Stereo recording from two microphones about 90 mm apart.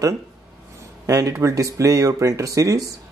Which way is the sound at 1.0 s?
35° right (ahead or behind).